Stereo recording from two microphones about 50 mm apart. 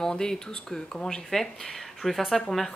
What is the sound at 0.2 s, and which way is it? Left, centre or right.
A woman's voice, centre.